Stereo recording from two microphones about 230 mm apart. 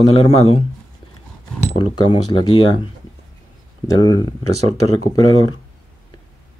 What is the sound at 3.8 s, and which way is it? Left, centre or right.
Speech, centre.